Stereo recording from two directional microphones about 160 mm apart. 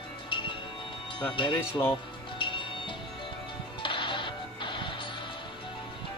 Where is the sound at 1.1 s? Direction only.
30° left (ahead or behind).